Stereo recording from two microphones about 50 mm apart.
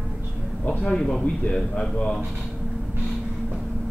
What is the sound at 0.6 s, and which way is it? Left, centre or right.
A man's voice, centre.